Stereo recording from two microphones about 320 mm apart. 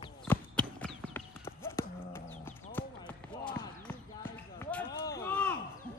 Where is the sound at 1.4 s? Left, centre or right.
Centre.